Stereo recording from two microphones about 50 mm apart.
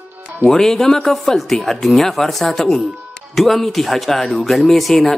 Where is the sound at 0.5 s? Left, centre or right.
Centre.